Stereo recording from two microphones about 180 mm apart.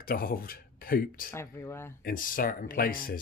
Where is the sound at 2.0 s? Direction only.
50° left (ahead or behind).